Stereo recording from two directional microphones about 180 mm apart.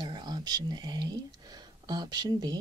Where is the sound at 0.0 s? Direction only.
25° right (ahead or behind).